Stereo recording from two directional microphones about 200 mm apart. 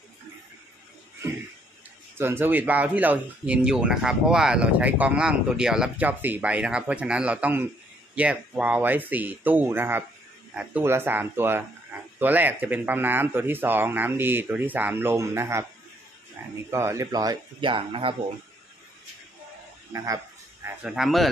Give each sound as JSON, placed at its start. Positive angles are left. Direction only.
{"t": 2.1, "sound": "speech", "side_deg": -10}
{"t": 20.6, "sound": "speech", "side_deg": -5}